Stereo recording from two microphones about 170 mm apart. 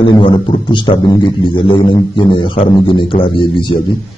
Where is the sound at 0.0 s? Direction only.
25° left (ahead or behind).